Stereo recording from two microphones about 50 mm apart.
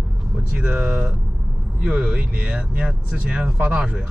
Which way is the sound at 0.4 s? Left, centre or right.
Right.